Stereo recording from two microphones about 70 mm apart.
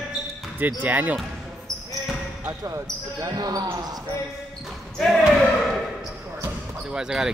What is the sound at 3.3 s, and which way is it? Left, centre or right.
Speech, right.